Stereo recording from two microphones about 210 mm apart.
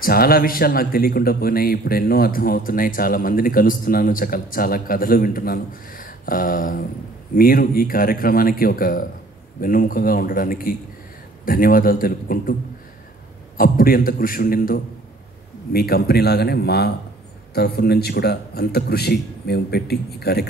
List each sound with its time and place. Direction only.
0.0 s speech: 45° left (ahead or behind)
13.6 s speech: 45° left (ahead or behind)